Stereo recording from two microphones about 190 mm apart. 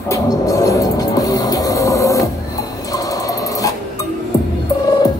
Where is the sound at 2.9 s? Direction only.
20° left (ahead or behind).